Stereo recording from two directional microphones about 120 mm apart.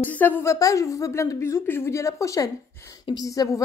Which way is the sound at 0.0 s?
15° left (ahead or behind).